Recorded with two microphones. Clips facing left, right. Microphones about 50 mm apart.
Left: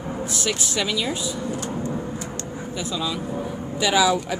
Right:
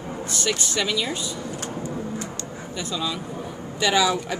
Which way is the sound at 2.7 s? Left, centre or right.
Centre.